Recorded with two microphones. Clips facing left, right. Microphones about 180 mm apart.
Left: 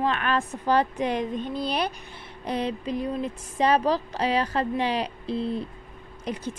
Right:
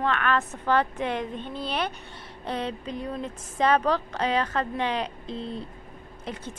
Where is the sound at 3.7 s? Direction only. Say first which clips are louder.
Left 1 dB; 35° left (ahead or behind).